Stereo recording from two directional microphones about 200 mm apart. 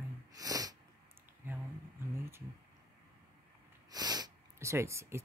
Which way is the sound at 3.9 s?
20° right (ahead or behind).